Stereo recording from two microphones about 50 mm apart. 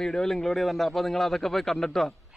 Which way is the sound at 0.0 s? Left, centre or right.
Centre.